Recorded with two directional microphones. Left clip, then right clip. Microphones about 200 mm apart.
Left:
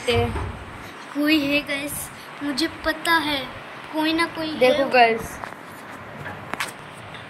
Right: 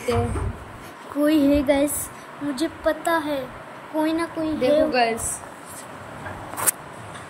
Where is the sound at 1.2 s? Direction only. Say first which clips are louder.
Right 2 dB; 35° right (ahead or behind).